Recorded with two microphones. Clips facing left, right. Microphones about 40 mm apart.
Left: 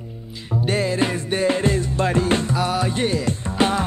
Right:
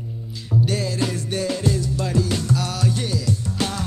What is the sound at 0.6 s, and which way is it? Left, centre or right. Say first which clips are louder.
Music: left 7 dB; left.